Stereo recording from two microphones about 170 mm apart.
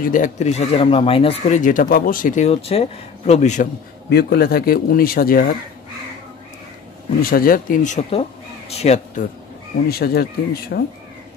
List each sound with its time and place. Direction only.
0.0 s speech: 50° left (ahead or behind); by 1.6 s 35° left (ahead or behind)
1.6 s speech: 55° left (ahead or behind)
4.1 s speech: 70° left (ahead or behind)
7.2 s speech: 60° left (ahead or behind)
8.1 s speech: 35° left (ahead or behind)
9.8 s speech: 65° left (ahead or behind)